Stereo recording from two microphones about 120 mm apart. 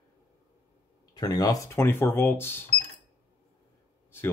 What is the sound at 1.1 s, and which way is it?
Speech, 30° left (ahead or behind).